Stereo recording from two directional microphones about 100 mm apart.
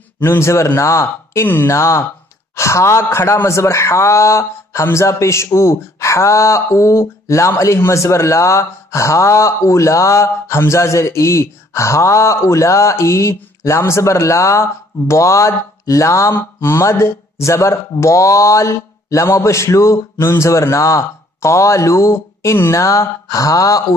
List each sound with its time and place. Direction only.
0.2 s speech: 25° left (ahead or behind)